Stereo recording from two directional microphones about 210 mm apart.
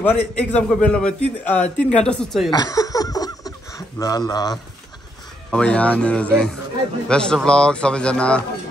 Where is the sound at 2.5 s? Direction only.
15° left (ahead or behind).